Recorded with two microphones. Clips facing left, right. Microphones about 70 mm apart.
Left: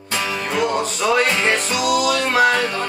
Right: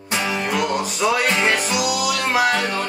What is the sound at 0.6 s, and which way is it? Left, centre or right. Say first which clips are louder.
Music: left 4 dB; centre.